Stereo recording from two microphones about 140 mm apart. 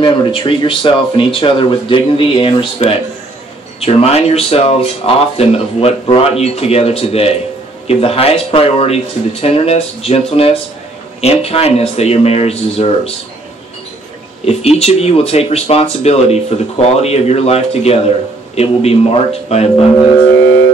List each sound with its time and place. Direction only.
0.0 s speech: 35° left (ahead or behind)
14.4 s speech: 45° left (ahead or behind)